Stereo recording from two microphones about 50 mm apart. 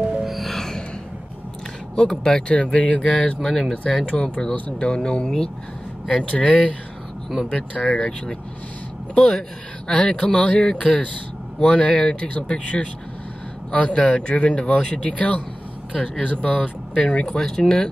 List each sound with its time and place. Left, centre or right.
0.2 s music: centre
2.0 s speech: centre
3.4 s speech: centre
3.7 s speech: left
9.9 s speech: centre